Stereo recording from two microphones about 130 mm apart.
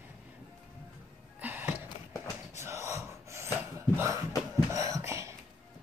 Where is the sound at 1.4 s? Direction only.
15° right (ahead or behind).